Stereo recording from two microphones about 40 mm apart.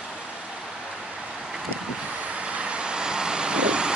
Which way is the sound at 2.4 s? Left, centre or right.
Right.